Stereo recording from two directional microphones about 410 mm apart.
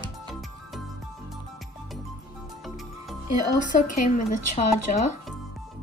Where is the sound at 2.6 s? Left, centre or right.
Centre.